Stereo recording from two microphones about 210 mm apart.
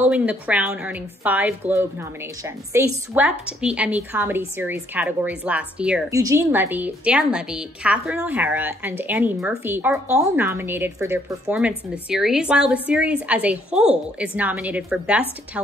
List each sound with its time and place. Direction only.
0.1 s a woman's voice: 5° right (ahead or behind)